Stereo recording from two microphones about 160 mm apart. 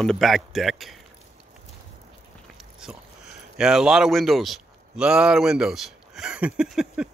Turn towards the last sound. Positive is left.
turn(degrees=-5)  # may be behind; listen again after turning